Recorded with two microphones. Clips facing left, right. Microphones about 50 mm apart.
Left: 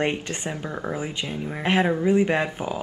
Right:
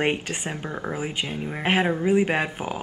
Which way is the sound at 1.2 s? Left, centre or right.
Right.